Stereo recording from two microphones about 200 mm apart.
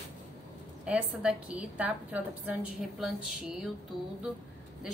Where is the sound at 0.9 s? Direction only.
5° right (ahead or behind).